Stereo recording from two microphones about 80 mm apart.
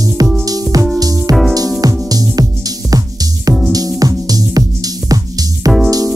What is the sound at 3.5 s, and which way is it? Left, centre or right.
Music, right.